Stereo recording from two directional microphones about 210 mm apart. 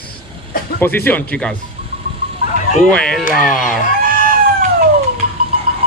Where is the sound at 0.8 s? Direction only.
10° left (ahead or behind).